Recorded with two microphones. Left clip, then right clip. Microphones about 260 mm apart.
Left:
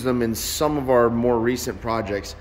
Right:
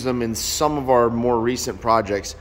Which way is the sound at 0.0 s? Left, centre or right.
Centre.